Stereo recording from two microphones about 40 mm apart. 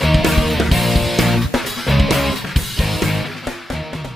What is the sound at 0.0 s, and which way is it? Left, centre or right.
Music, centre.